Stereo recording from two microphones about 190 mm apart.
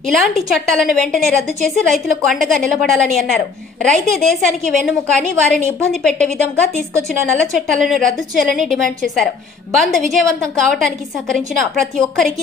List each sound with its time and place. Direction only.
0.1 s a woman's voice: centre (ahead or behind)
6.5 s a woman's voice: 15° right (ahead or behind)
7.5 s a woman's voice: centre (ahead or behind)